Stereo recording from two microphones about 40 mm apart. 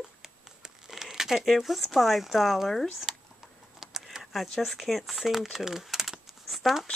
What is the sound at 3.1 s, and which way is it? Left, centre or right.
Typing, centre.